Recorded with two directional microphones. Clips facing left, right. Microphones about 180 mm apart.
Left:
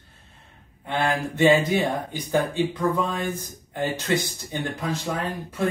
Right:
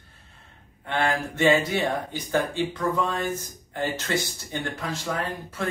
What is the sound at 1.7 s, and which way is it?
Speech, 15° left (ahead or behind).